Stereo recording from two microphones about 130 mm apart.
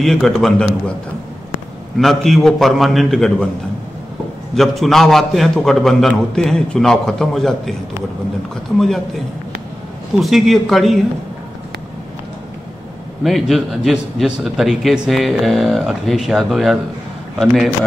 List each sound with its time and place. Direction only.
0.0 s a man's voice: centre (ahead or behind)
2.0 s a man's voice: centre (ahead or behind)
4.6 s a man's voice: centre (ahead or behind)
8.7 s a man's voice: centre (ahead or behind)
10.1 s a man's voice: centre (ahead or behind)
13.2 s a man's voice: centre (ahead or behind)